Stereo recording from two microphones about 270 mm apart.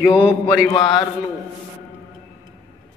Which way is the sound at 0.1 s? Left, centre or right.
Centre.